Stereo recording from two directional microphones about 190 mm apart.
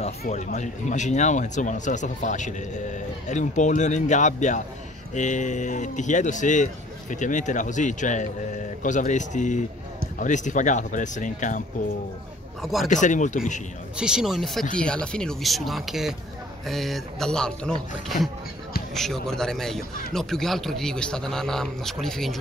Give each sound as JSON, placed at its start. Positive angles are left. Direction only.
{"t": 0.5, "sound": "a man's voice", "side_deg": 40}
{"t": 12.6, "sound": "a man's voice", "side_deg": 0}
{"t": 12.9, "sound": "a man's voice", "side_deg": 40}
{"t": 13.9, "sound": "a man's voice", "side_deg": -5}